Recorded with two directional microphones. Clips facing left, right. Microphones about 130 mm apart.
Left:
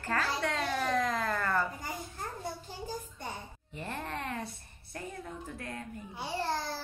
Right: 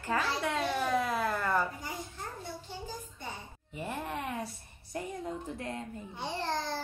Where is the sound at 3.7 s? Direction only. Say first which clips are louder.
Right 2 dB; 10° right (ahead or behind).